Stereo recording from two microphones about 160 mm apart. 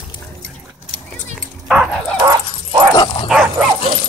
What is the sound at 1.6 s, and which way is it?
Dog, centre (ahead or behind).